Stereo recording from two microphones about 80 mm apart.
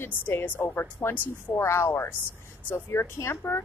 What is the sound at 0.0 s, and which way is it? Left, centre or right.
A woman's voice, left.